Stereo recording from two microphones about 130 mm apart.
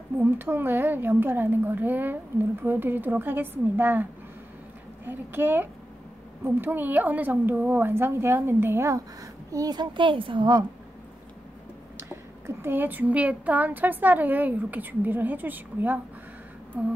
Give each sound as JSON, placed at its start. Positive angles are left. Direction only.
{"t": 0.2, "sound": "a woman's voice", "side_deg": -15}
{"t": 12.0, "sound": "speech", "side_deg": -20}